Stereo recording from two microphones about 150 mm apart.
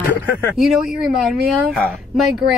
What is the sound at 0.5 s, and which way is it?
Speech, centre (ahead or behind).